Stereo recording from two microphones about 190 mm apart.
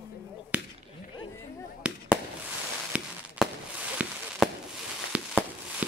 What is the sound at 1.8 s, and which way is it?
Fireworks, 5° right (ahead or behind).